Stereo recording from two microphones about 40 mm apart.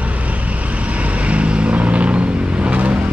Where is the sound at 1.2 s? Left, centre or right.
Right.